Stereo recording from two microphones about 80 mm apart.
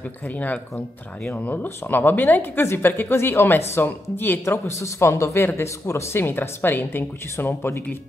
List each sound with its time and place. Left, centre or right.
0.4 s speech: centre